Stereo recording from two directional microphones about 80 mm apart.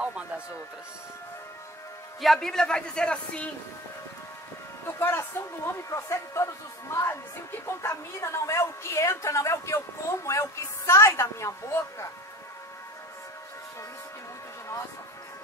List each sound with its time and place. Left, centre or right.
2.2 s speech: centre
4.8 s a woman's voice: left